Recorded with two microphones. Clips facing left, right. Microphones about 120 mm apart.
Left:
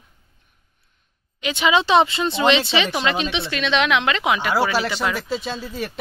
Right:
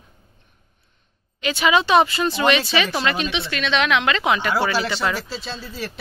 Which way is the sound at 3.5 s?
15° left (ahead or behind).